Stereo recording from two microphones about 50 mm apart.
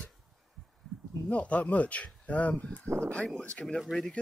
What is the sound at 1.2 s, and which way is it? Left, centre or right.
Speech, left.